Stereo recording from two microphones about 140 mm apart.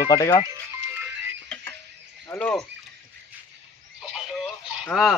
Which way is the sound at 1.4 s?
5° left (ahead or behind).